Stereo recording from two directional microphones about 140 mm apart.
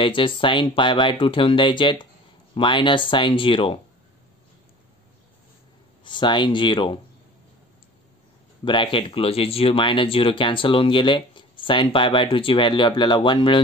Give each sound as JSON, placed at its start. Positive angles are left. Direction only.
{"t": 0.0, "sound": "speech", "side_deg": 35}
{"t": 6.0, "sound": "speech", "side_deg": 35}
{"t": 8.6, "sound": "speech", "side_deg": 35}